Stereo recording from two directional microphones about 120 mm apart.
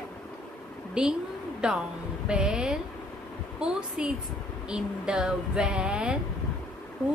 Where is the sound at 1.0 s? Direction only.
5° right (ahead or behind).